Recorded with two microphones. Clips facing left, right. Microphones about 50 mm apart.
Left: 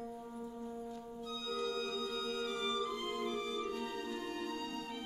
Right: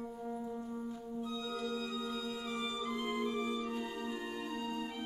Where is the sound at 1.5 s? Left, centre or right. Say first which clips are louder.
Left 3 dB; centre.